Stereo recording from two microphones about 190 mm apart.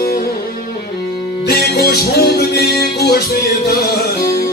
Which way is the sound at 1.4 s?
55° left (ahead or behind).